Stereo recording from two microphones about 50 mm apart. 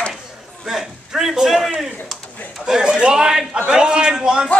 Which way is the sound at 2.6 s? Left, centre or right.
Centre.